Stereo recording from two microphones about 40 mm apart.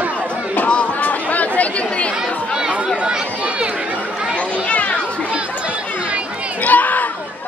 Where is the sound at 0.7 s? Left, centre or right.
Left.